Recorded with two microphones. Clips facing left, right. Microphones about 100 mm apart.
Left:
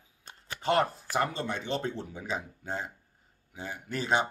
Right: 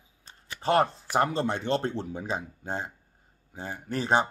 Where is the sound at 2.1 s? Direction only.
35° right (ahead or behind).